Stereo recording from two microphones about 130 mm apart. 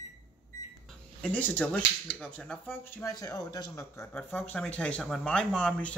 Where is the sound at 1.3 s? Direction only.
10° left (ahead or behind).